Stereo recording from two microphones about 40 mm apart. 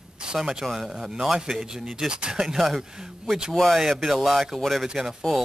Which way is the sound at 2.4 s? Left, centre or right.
Centre.